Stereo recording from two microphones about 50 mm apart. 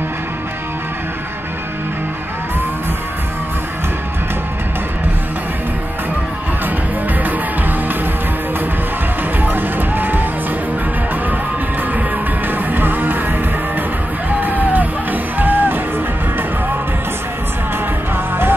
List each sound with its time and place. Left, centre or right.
9.4 s music: right
12.4 s music: right
14.4 s music: right